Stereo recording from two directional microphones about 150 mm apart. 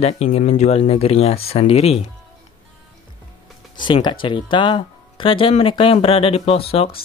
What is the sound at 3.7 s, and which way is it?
Speech, 30° left (ahead or behind).